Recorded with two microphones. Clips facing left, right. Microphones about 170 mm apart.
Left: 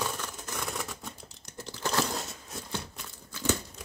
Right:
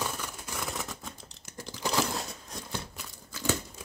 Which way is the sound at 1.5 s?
15° right (ahead or behind).